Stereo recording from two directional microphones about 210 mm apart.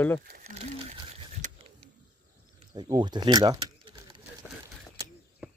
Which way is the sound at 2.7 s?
20° right (ahead or behind).